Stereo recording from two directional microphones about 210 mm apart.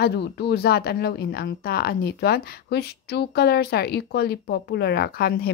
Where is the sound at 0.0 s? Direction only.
50° left (ahead or behind).